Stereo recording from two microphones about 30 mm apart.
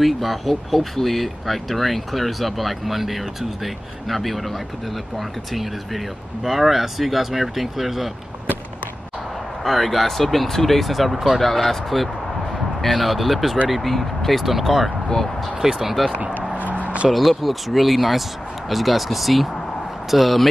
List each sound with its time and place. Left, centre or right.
0.0 s speech: centre
9.6 s speech: centre
11.4 s speech: centre
14.4 s speech: centre
15.6 s speech: centre
16.5 s a sound: right
17.1 s speech: centre